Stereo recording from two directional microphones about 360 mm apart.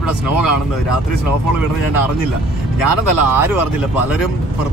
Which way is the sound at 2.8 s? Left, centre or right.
Left.